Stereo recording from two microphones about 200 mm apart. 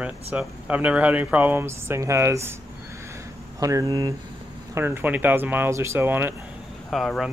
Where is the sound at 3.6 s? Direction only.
15° right (ahead or behind).